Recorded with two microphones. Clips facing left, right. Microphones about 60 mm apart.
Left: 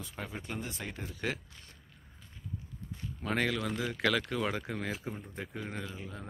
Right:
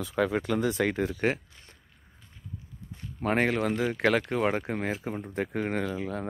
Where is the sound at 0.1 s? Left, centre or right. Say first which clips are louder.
Right 15 dB; right.